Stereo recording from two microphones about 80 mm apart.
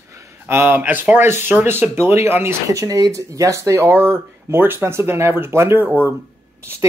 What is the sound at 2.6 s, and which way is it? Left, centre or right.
Speech, right.